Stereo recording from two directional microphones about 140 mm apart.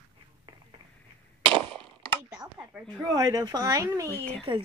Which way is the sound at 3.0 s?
25° right (ahead or behind).